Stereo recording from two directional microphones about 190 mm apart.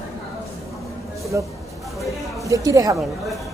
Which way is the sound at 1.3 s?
15° right (ahead or behind).